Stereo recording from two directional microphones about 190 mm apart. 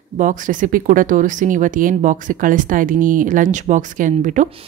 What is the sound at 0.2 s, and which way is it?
A woman's voice, 45° right (ahead or behind).